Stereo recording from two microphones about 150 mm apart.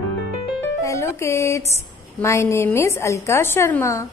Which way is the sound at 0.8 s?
20° left (ahead or behind).